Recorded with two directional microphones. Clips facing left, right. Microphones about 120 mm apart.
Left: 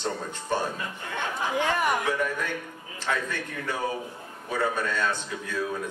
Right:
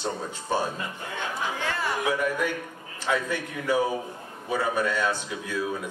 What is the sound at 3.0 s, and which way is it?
Speech, 10° right (ahead or behind).